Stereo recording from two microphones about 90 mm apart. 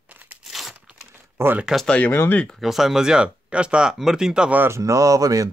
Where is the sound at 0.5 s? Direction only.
Centre (ahead or behind).